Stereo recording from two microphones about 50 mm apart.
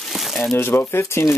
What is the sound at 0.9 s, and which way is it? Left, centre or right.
Speech, left.